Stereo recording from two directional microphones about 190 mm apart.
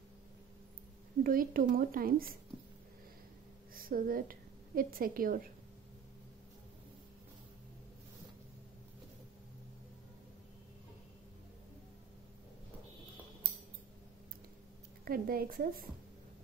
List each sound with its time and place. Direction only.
1.2 s a woman's voice: 50° right (ahead or behind)
3.7 s a woman's voice: 50° right (ahead or behind)
15.0 s a woman's voice: 50° right (ahead or behind)